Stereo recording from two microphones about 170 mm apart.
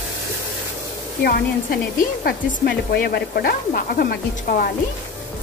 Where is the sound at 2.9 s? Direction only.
75° left (ahead or behind).